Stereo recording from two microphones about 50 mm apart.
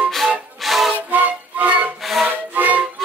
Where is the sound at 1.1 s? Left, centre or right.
Right.